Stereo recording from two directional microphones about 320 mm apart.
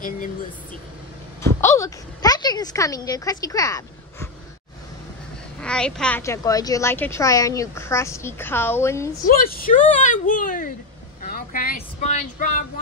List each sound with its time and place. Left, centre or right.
1.4 s a woman's voice: centre
5.6 s speech: centre
9.2 s a woman's voice: left